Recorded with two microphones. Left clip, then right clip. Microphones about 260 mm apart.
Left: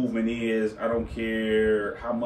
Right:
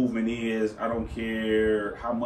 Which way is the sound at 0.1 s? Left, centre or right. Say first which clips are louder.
Left 2 dB; centre.